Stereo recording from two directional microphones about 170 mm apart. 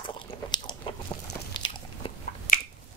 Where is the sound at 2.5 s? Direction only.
50° left (ahead or behind).